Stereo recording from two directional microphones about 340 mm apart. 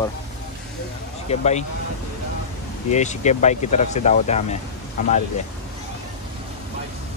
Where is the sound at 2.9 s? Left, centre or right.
Left.